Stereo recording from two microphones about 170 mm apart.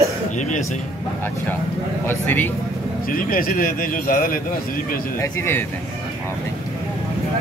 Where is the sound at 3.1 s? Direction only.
55° left (ahead or behind).